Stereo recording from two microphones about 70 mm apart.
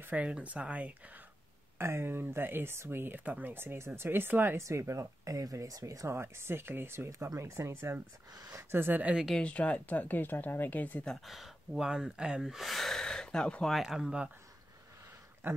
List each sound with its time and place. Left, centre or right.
0.0 s speech: centre
1.8 s speech: right
4.6 s speech: right
7.1 s speech: right
8.4 s speech: right
8.7 s speech: right
9.4 s speech: centre
11.2 s speech: centre
13.8 s speech: centre
15.4 s speech: right